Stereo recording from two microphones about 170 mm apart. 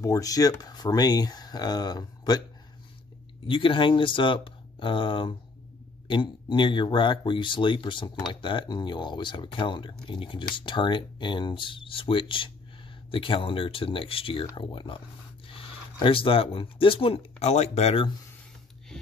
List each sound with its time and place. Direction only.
0.0 s speech: 20° left (ahead or behind)
3.4 s speech: 30° left (ahead or behind)